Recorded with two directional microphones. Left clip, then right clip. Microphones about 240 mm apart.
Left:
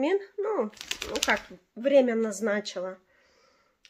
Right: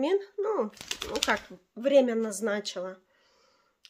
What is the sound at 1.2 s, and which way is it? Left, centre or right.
Speech, centre.